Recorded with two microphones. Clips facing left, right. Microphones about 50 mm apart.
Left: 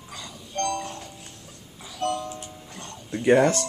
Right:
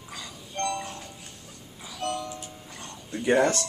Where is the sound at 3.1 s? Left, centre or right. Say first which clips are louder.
Left 4 dB; centre.